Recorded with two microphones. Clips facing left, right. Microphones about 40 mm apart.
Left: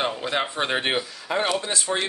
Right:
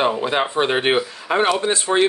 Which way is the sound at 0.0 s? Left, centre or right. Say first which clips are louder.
Right 6 dB; centre.